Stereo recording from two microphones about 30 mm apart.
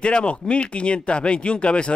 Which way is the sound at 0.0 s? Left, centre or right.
Left.